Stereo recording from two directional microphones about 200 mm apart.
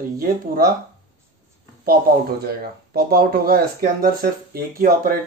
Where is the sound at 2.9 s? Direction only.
50° right (ahead or behind).